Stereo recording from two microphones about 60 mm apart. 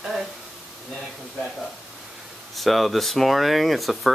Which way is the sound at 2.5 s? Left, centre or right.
Centre.